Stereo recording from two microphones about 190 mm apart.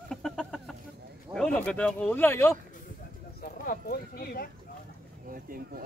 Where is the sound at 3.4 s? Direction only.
50° left (ahead or behind).